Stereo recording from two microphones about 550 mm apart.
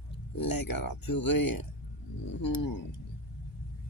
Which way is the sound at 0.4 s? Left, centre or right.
Left.